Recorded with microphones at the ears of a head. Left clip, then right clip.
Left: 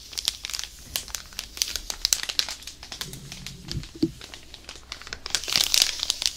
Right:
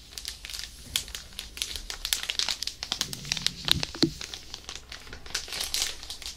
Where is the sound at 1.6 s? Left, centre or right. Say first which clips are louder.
Left 7 dB; left.